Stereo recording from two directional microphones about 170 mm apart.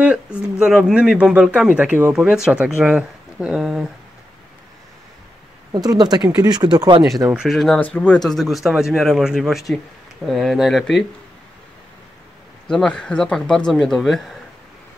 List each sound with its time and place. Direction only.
0.0 s speech: 5° right (ahead or behind)
5.7 s speech: 25° right (ahead or behind)
7.3 s speech: centre (ahead or behind)
12.6 s speech: 5° left (ahead or behind)